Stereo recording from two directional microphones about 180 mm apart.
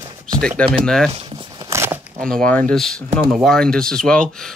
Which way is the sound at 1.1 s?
30° right (ahead or behind).